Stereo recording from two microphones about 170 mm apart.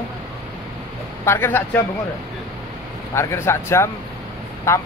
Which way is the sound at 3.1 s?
15° left (ahead or behind).